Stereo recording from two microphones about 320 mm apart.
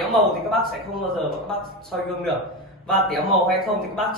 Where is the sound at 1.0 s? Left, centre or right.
Centre.